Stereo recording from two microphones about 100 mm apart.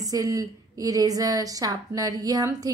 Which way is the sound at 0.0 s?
40° right (ahead or behind).